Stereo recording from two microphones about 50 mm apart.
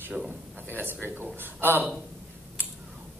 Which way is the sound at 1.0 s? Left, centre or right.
Right.